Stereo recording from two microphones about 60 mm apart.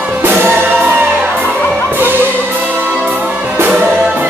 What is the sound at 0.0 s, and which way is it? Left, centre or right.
Music, right.